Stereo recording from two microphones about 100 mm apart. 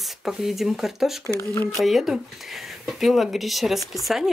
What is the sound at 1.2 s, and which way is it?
Speech, 30° left (ahead or behind).